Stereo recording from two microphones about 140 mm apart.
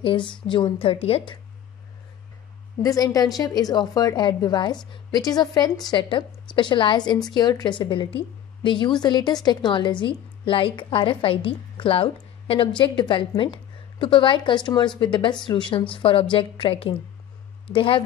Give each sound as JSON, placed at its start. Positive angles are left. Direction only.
{"t": 0.0, "sound": "a woman's voice", "side_deg": 35}
{"t": 2.8, "sound": "a woman's voice", "side_deg": 25}